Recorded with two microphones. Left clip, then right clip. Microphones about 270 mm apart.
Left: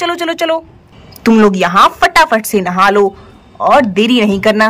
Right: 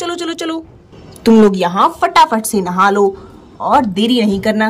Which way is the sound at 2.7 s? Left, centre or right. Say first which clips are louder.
Left 2 dB; centre.